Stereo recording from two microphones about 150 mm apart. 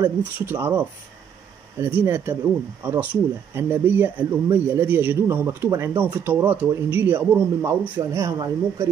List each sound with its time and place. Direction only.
0.0 s speech: 15° right (ahead or behind)